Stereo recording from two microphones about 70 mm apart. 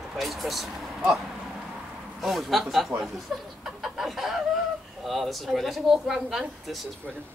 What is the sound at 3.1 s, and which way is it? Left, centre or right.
Chuckle, centre.